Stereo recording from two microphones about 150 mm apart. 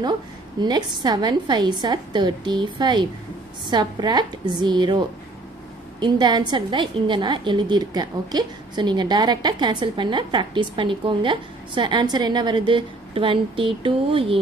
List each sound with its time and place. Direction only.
0.6 s a woman's voice: 30° right (ahead or behind)